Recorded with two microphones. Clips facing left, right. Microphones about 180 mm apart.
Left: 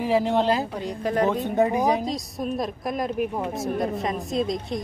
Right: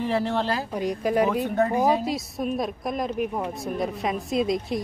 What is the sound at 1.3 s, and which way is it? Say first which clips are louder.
Speech: left 1 dB; 20° left (ahead or behind).